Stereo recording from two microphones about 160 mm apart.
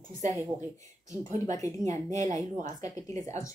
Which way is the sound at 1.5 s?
20° left (ahead or behind).